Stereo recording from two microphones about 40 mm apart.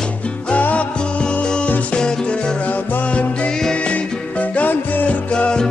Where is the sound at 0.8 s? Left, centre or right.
Left.